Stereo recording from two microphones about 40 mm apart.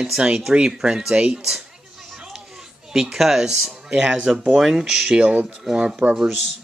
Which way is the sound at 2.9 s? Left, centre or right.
Centre.